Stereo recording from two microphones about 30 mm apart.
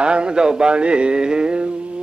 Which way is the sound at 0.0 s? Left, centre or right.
Right.